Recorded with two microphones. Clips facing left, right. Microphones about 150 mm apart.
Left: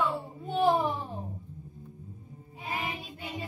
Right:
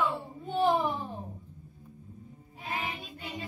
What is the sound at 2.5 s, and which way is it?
Child singing, 10° left (ahead or behind).